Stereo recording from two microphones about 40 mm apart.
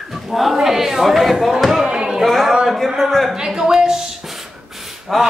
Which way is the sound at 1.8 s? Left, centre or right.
Centre.